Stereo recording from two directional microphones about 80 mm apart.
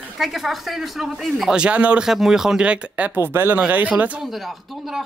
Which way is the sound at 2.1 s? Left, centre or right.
Centre.